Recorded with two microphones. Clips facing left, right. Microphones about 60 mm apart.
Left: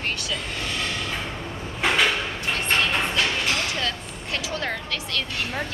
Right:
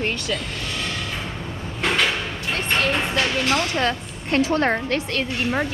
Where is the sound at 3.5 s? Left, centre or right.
Right.